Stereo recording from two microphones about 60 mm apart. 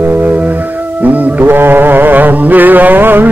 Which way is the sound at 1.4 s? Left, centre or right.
Right.